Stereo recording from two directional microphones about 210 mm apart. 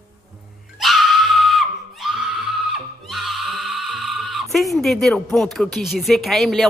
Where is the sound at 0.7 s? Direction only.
Centre (ahead or behind).